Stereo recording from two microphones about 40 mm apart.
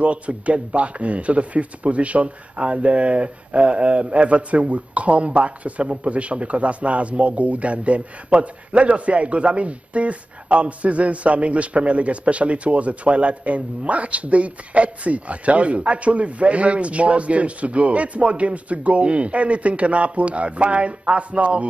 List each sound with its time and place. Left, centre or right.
0.0 s speech: right